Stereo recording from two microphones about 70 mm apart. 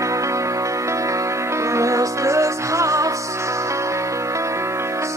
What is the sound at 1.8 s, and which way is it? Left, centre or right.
Music, right.